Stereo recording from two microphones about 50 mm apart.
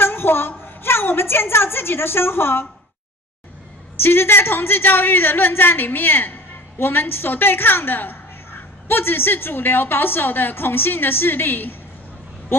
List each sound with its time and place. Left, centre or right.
0.0 s a woman's voice: left
4.0 s a woman's voice: left